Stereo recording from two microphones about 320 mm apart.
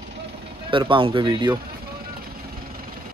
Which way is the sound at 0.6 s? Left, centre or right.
Centre.